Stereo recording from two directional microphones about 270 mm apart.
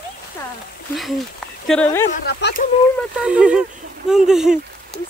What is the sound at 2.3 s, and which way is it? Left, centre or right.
Speech, left.